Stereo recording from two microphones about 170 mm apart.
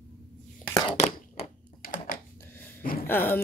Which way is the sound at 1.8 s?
55° left (ahead or behind).